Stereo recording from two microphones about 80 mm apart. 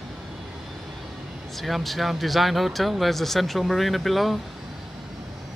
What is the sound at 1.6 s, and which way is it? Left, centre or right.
Speech, centre.